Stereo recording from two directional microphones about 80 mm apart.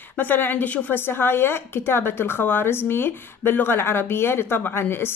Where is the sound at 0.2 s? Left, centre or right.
Left.